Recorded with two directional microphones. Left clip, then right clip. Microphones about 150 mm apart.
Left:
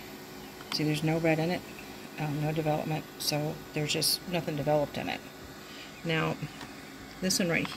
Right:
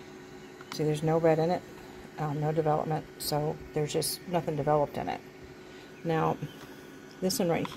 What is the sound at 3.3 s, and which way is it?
Speech, 20° right (ahead or behind).